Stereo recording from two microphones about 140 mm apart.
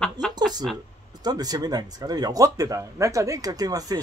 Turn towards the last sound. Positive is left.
turn(degrees=-25)  # may be behind; listen again after turning